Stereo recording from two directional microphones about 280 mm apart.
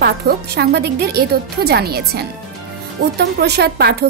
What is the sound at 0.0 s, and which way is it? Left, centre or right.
Speech, right.